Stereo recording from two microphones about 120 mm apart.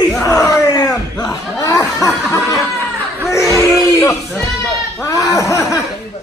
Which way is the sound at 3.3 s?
25° left (ahead or behind).